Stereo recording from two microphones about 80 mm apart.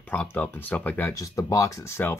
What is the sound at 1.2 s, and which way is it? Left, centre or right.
Speech, left.